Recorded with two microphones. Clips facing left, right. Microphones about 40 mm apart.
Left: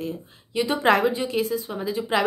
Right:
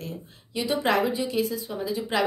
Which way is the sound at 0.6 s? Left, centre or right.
Left.